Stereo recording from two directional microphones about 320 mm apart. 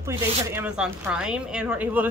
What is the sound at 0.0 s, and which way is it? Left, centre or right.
Speech, centre.